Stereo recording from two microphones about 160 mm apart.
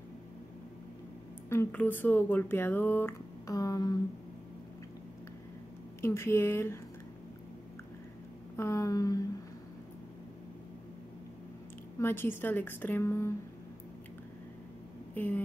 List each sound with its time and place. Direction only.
1.5 s speech: 15° left (ahead or behind)
5.9 s speech: 15° left (ahead or behind)
8.5 s a sound: 20° left (ahead or behind)
12.0 s speech: 15° left (ahead or behind)
15.1 s speech: 10° left (ahead or behind)